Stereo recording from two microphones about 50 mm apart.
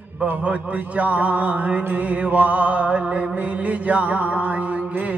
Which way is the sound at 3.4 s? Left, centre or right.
Right.